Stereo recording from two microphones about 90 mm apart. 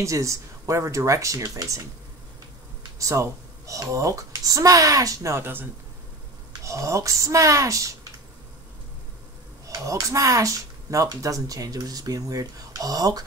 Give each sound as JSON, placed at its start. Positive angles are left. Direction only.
{"t": 0.0, "sound": "speech", "side_deg": -35}
{"t": 3.0, "sound": "speech", "side_deg": -35}
{"t": 6.6, "sound": "speech", "side_deg": -35}
{"t": 9.7, "sound": "speech", "side_deg": -40}